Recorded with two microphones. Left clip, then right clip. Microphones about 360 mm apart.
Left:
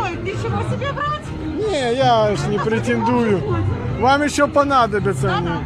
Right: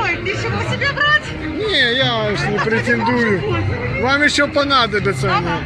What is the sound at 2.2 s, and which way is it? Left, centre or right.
Speech, centre.